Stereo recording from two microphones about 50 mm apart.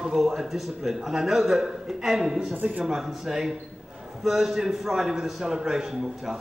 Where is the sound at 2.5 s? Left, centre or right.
Right.